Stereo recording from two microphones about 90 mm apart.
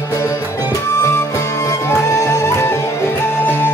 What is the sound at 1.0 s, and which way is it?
Music, 30° left (ahead or behind).